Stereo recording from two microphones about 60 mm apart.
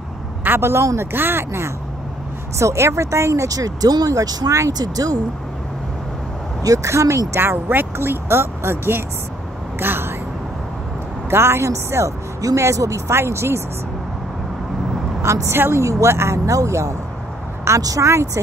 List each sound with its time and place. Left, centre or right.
0.4 s speech: right
2.6 s speech: right
6.6 s speech: right
7.3 s speech: right
9.8 s a sound: right
11.2 s a woman's voice: right
12.5 s speech: right
13.1 s speech: right
15.4 s speech: right
15.8 s speech: right
16.4 s speech: right
17.6 s speech: right
18.0 s speech: right